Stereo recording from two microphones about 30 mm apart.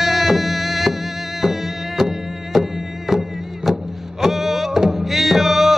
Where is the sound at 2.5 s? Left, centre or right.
Centre.